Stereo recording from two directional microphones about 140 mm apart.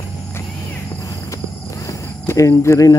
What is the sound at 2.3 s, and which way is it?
Speech, 20° left (ahead or behind).